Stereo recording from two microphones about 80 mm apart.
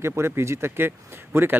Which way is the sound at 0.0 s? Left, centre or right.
Right.